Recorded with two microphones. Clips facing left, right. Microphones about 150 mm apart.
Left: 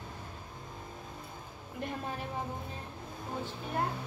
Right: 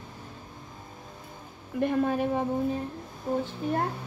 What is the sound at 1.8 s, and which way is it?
Speech, 60° right (ahead or behind).